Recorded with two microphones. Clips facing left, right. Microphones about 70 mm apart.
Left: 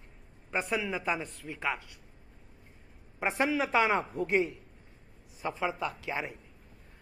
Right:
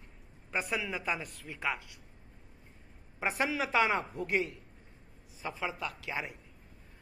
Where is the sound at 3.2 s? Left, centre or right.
Centre.